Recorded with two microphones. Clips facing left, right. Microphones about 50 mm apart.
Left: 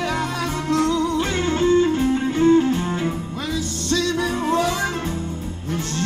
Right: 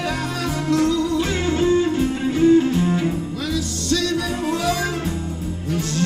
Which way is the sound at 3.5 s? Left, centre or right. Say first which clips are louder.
Even; left.